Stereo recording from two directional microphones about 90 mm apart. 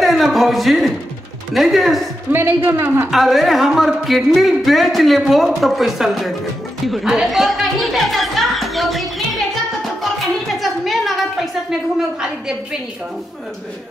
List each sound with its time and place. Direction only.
0.0 s a sound: centre (ahead or behind)
1.5 s speech: centre (ahead or behind)
2.3 s a woman's voice: 25° right (ahead or behind)
3.1 s speech: centre (ahead or behind)
6.9 s music: 5° right (ahead or behind)
10.6 s a sound: centre (ahead or behind)